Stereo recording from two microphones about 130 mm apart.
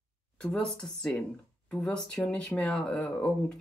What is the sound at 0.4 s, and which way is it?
Speech, 5° left (ahead or behind).